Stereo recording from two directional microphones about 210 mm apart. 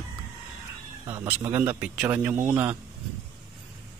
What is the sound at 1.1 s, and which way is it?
A man's voice, 10° right (ahead or behind).